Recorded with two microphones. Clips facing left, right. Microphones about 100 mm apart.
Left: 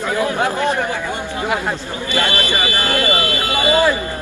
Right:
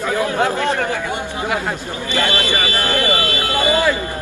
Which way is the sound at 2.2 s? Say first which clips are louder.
Even; 20° left (ahead or behind).